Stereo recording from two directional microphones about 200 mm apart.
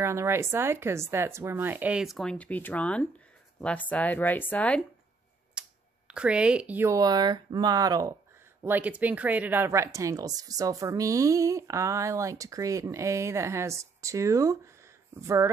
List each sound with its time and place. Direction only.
0.0 s speech: 15° right (ahead or behind); by 4.8 s 5° left (ahead or behind)
5.5 s speech: 5° right (ahead or behind)